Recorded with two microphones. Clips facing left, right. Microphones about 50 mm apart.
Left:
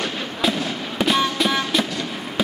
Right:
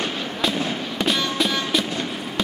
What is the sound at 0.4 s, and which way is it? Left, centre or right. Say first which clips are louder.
Fireworks: left 1 dB; centre.